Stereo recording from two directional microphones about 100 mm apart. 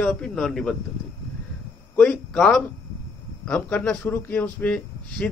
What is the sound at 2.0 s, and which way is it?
A man's voice, 5° left (ahead or behind).